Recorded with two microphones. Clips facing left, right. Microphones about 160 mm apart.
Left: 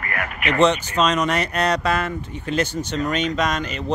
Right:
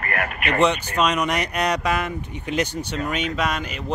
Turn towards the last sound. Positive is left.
turn(degrees=-10)  # may be behind; listen again after turning